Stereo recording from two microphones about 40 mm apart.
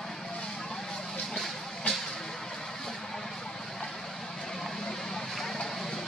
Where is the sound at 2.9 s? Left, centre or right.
Centre.